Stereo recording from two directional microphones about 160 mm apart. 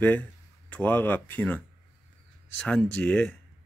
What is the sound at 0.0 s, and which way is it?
Speech, 10° left (ahead or behind).